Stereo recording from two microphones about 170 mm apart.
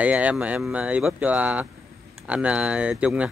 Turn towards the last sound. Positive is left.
turn(degrees=-5)  # may be behind; listen again after turning